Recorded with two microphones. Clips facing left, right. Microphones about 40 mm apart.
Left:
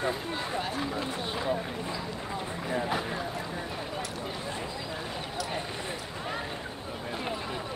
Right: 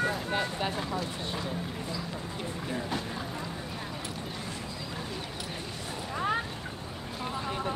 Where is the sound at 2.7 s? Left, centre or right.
Left.